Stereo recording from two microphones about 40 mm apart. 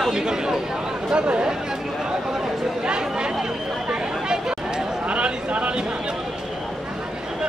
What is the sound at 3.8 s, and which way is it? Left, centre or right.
Chatter, right.